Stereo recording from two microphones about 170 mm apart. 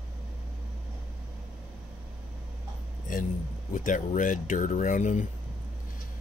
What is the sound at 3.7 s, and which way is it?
Speech, 50° left (ahead or behind).